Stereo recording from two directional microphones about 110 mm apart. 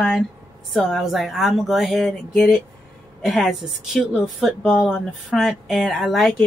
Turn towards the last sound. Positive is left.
turn(degrees=0)  # may be behind; listen again after turning